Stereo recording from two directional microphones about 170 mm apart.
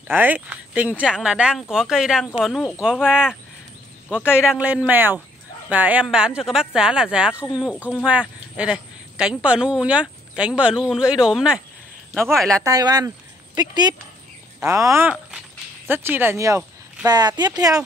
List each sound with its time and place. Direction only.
0.1 s speech: 10° right (ahead or behind)
12.6 s speech: 20° right (ahead or behind)